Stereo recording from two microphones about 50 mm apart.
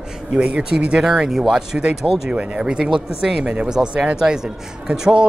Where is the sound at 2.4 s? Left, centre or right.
Right.